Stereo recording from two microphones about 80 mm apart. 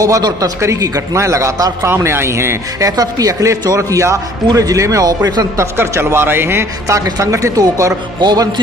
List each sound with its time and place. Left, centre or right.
0.0 s a man's voice: right
3.0 s a man's voice: right
5.8 s a man's voice: right
8.2 s a man's voice: right